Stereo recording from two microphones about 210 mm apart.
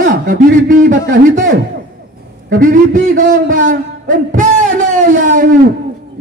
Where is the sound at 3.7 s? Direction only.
40° right (ahead or behind).